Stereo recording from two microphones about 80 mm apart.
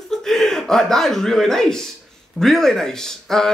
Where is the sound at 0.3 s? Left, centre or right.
Centre.